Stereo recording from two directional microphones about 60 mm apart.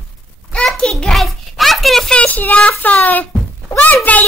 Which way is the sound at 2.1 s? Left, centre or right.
Left.